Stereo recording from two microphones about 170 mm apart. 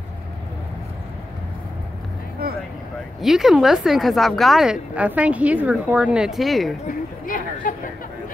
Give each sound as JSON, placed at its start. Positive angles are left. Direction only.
{"t": 3.2, "sound": "speech", "side_deg": 0}
{"t": 7.2, "sound": "speech", "side_deg": 55}